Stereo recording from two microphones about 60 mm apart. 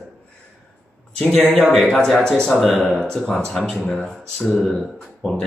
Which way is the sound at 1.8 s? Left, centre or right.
Centre.